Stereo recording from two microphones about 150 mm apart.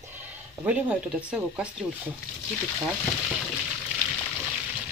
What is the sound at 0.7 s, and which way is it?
Speech, 10° right (ahead or behind).